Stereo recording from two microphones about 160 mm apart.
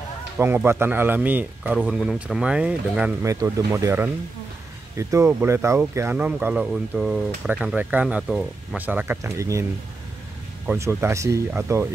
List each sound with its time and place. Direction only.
0.4 s speech: 15° right (ahead or behind)
3.3 s speech: 20° right (ahead or behind)
10.7 s speech: 15° right (ahead or behind)